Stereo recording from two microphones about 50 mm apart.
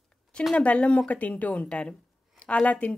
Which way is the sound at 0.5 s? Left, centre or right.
Left.